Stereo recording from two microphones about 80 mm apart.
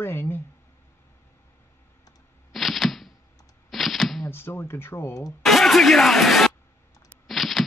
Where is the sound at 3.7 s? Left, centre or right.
Centre.